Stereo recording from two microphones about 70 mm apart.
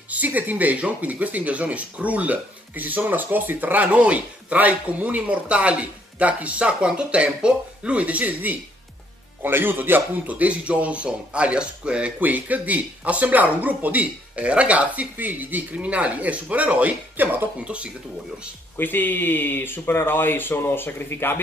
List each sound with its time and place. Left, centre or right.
0.1 s a man's voice: right
18.8 s speech: left